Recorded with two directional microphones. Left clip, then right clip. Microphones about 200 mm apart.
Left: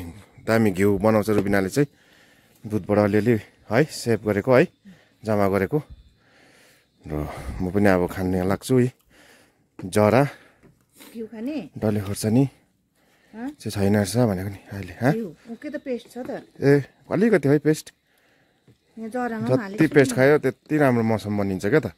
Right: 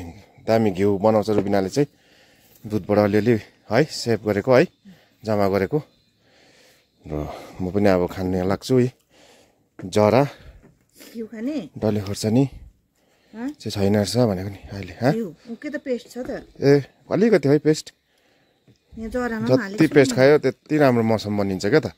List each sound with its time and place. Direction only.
0.0 s speech: 5° left (ahead or behind)
11.1 s speech: 35° right (ahead or behind)
11.8 s speech: centre (ahead or behind)
13.6 s speech: centre (ahead or behind)
15.6 s speech: 35° right (ahead or behind)
16.5 s speech: centre (ahead or behind)
18.9 s speech: 35° right (ahead or behind)
19.7 s speech: 5° right (ahead or behind)